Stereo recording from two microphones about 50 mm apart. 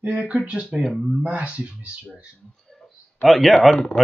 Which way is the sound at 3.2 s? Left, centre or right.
Centre.